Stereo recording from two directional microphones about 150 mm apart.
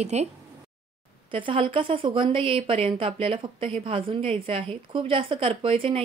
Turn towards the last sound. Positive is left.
turn(degrees=-40)  # may be behind; listen again after turning